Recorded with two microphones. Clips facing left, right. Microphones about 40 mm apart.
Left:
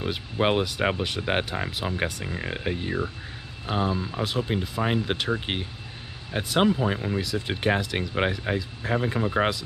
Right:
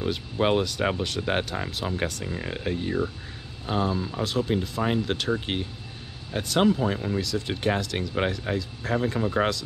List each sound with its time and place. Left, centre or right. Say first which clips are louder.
0.0 s speech: even; centre